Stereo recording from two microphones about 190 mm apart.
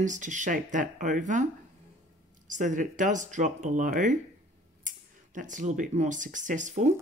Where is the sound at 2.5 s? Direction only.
40° right (ahead or behind).